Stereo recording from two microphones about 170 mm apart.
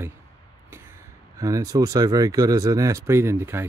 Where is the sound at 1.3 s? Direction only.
20° right (ahead or behind).